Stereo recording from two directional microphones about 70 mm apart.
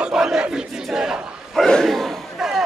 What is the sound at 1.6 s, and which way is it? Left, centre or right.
Battle cry, centre.